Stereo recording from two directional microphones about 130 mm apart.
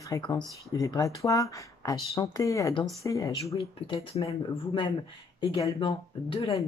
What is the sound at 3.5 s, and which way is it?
Speech, 45° left (ahead or behind).